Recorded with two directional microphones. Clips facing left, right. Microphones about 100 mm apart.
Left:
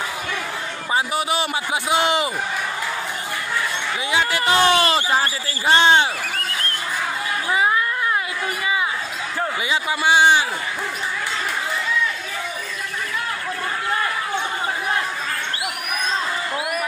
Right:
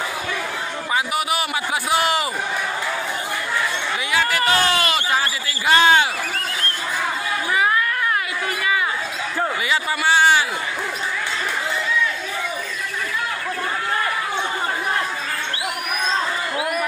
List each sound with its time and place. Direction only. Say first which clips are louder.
0.9 s a man's voice: left 1 dB; 30° left (ahead or behind)
4.1 s speech: even; 20° left (ahead or behind)
7.5 s a sound: even; 20° left (ahead or behind)
9.7 s speech: left 2 dB; 20° left (ahead or behind)